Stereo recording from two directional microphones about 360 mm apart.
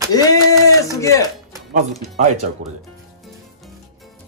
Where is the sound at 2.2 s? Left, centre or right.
Centre.